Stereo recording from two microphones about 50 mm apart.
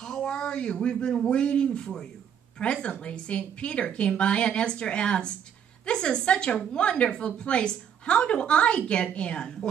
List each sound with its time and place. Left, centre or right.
0.0 s a woman's voice: centre